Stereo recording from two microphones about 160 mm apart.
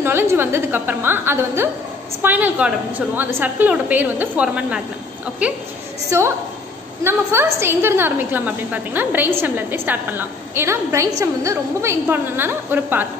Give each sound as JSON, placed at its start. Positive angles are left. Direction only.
{"t": 0.0, "sound": "a woman's voice", "side_deg": -15}